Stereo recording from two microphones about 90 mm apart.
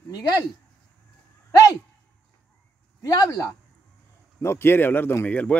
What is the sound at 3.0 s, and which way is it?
Speech, 45° left (ahead or behind).